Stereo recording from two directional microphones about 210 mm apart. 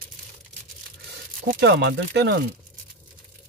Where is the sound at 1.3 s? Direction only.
45° right (ahead or behind).